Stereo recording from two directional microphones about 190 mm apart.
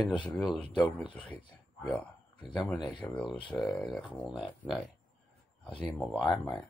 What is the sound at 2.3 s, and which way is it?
Speech, 25° left (ahead or behind).